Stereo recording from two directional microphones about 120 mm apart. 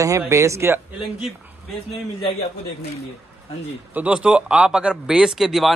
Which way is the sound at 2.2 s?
55° left (ahead or behind).